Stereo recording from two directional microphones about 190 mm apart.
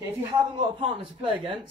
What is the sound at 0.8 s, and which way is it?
Speech, 30° right (ahead or behind).